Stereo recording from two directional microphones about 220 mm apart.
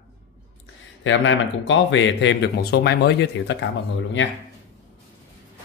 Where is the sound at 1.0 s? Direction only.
55° left (ahead or behind).